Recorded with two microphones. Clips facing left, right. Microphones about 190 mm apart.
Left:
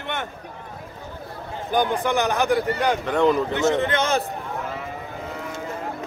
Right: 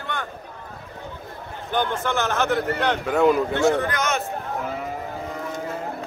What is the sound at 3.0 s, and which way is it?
Speech, 5° right (ahead or behind).